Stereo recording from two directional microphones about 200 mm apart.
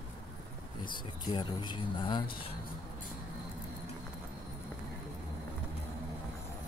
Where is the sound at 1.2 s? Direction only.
20° left (ahead or behind).